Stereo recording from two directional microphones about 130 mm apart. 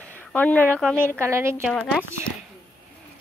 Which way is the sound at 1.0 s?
20° right (ahead or behind).